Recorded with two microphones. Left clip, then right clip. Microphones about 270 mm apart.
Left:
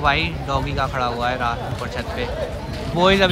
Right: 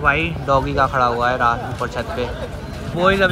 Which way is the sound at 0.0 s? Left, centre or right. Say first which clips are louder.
Right 2 dB; centre.